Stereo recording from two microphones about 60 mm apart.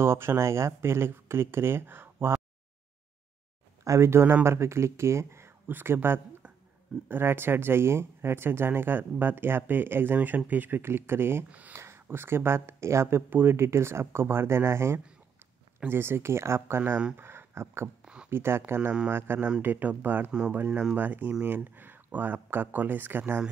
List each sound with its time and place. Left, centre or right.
0.0 s speech: right
3.8 s speech: right
4.5 s speech: right
5.7 s speech: right
18.0 s a sound: centre
18.3 s speech: right
20.2 s speech: centre
20.5 s speech: right